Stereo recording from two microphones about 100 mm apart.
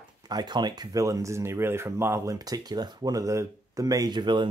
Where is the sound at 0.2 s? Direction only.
45° right (ahead or behind).